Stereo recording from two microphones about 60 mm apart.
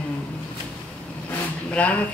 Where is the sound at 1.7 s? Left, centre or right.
Left.